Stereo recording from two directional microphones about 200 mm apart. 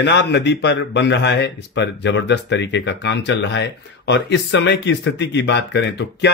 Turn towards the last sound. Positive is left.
turn(degrees=60)  # may be behind; listen again after turning